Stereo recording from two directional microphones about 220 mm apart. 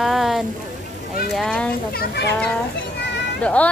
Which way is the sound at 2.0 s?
50° left (ahead or behind).